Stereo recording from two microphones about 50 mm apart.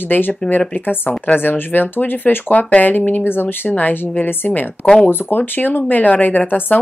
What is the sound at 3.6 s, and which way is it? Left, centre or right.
Speech, left.